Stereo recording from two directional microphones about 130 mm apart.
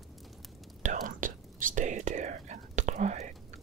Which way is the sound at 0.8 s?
90° right.